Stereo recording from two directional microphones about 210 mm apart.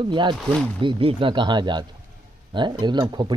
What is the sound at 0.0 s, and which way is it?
Speech, 20° right (ahead or behind).